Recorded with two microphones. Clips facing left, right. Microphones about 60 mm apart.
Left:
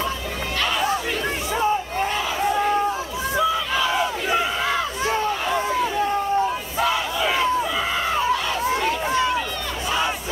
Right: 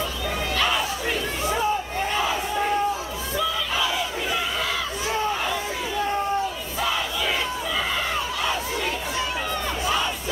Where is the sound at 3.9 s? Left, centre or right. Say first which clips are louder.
Left 5 dB; left.